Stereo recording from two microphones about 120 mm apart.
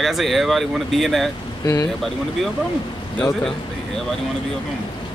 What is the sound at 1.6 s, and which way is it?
Speech, 25° left (ahead or behind).